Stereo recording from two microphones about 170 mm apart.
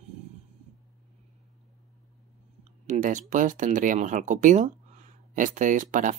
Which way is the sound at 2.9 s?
50° right (ahead or behind).